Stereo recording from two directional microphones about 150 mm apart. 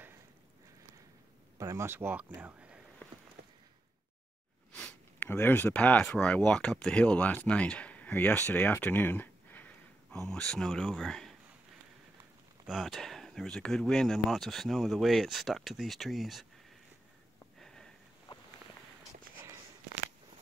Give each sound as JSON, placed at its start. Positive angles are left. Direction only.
{"t": 1.6, "sound": "speech", "side_deg": -20}
{"t": 3.4, "sound": "a sound", "side_deg": -90}
{"t": 4.7, "sound": "speech", "side_deg": 10}
{"t": 12.6, "sound": "speech", "side_deg": 0}
{"t": 17.6, "sound": "sniff", "side_deg": 5}
{"t": 18.3, "sound": "a sound", "side_deg": 35}